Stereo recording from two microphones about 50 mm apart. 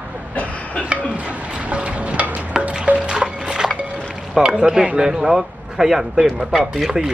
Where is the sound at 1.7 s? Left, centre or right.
Right.